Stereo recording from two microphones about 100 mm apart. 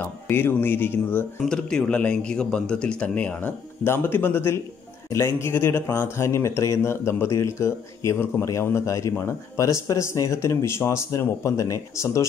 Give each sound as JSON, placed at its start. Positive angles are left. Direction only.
{"t": 0.0, "sound": "speech", "side_deg": 20}
{"t": 1.4, "sound": "a man's voice", "side_deg": 5}